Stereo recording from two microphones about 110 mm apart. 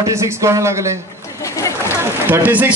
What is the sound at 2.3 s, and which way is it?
Speech, 15° right (ahead or behind).